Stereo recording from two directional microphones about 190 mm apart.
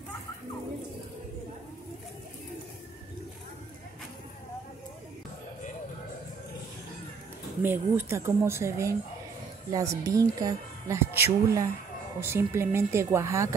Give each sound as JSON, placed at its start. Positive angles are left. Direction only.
{"t": 7.6, "sound": "speech", "side_deg": -10}